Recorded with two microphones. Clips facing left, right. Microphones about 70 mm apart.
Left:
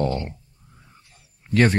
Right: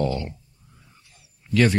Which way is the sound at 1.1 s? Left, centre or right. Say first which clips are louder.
Left 1 dB; left.